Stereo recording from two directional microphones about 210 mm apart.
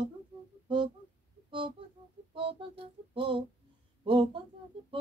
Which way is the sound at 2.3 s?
25° right (ahead or behind).